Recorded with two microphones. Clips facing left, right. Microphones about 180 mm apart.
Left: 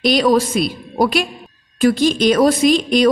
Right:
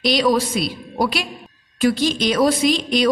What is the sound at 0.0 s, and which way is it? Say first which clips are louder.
A woman's voice: left 3 dB; 50° left (ahead or behind).